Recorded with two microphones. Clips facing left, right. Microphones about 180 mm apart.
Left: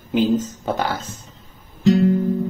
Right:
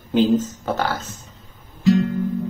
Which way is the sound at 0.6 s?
15° left (ahead or behind).